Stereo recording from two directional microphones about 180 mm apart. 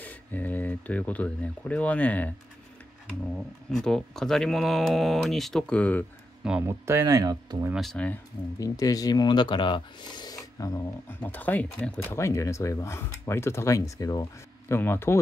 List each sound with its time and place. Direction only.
0.0 s speech: 10° left (ahead or behind)
3.7 s speech: 5° left (ahead or behind)
6.6 s speech: 15° right (ahead or behind)
7.7 s speech: centre (ahead or behind)
8.5 s speech: 20° left (ahead or behind)